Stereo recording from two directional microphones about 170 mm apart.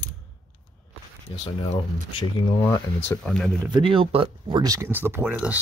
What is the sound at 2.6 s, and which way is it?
Speech, 20° left (ahead or behind).